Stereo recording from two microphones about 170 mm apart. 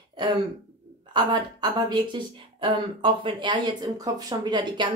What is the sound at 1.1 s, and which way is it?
A woman's voice, 25° right (ahead or behind).